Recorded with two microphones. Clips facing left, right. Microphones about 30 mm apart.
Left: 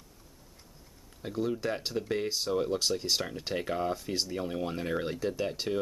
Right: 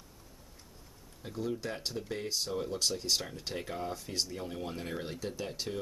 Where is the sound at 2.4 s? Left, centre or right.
Centre.